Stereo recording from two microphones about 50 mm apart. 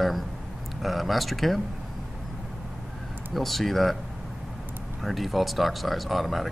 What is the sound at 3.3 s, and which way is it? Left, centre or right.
Speech, centre.